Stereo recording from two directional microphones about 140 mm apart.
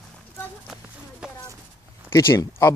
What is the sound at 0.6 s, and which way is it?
Clip-clop, 5° right (ahead or behind).